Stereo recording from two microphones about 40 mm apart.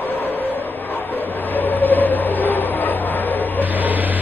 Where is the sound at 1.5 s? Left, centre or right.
Left.